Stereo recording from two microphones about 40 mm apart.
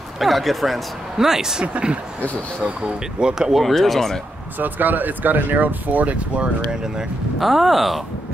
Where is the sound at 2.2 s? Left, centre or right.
Left.